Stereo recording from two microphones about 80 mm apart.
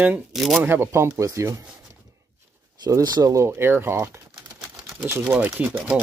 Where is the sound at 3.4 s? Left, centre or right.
Right.